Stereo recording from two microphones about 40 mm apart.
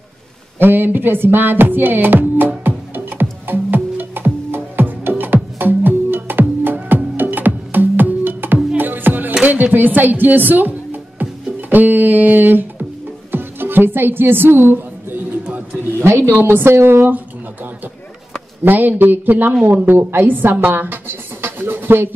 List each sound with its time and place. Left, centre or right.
0.6 s music: right
9.4 s music: right
11.7 s speech: right
13.3 s music: right
16.0 s a woman's voice: right
18.6 s speech: right
20.2 s speech: right